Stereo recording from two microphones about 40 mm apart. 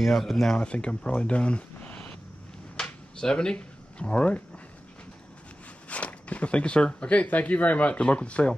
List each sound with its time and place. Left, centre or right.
0.0 s speech: centre
0.6 s speech: left
1.9 s vehicle: left
2.8 s a sound: centre
4.0 s speech: left
5.9 s speech: left
7.2 s speech: left